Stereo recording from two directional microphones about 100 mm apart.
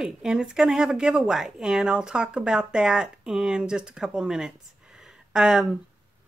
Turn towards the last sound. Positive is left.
turn(degrees=-5)  # may be behind; listen again after turning